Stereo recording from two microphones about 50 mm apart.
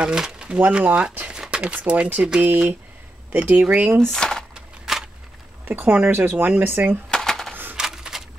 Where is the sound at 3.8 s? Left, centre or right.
Right.